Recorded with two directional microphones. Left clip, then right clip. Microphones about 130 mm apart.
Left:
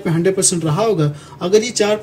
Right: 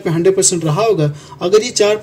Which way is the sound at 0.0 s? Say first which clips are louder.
Right 4 dB; 35° right (ahead or behind).